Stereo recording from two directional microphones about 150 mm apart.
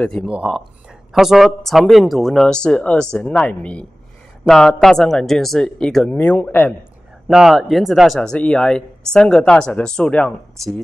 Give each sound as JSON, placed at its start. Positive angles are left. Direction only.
{"t": 0.0, "sound": "speech", "side_deg": 5}
{"t": 7.2, "sound": "speech", "side_deg": 0}